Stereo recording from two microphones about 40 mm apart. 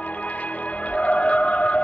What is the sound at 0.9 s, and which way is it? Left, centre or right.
Music, left.